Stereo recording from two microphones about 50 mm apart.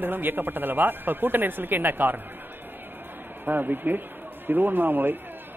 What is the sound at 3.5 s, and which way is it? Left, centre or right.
Speech, right.